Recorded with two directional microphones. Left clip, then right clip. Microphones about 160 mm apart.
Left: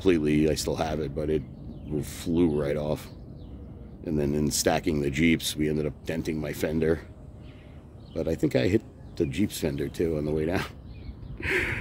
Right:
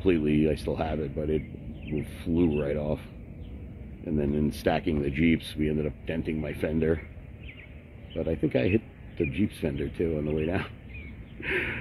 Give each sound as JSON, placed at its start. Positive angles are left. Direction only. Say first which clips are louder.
{"t": 0.0, "sound": "speech", "louder": "left 2 dB", "side_deg": 20}
{"t": 8.1, "sound": "speech", "louder": "left 1 dB", "side_deg": 20}
{"t": 11.4, "sound": "speech", "louder": "left 2 dB", "side_deg": 20}